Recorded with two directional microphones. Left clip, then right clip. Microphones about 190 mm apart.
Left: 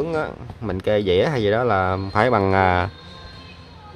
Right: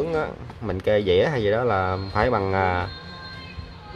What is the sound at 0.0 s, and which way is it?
Speech, 20° left (ahead or behind).